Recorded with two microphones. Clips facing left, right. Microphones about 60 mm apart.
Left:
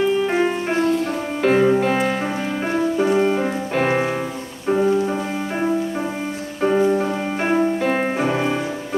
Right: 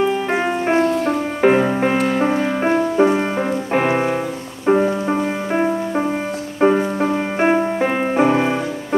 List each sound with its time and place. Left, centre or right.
0.3 s music: right
4.6 s music: right
6.6 s music: right
7.1 s music: right